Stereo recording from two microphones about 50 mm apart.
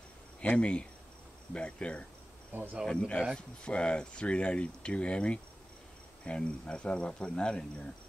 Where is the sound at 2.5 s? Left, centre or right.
Right.